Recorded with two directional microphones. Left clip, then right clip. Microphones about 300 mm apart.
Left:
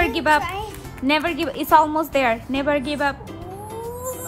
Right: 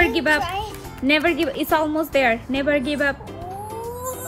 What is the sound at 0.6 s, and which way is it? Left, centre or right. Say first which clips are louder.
Music: right 1 dB; centre.